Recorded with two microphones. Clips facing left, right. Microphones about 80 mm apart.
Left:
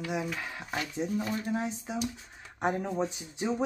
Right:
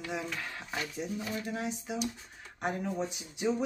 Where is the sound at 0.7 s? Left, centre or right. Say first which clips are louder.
Left 5 dB; left.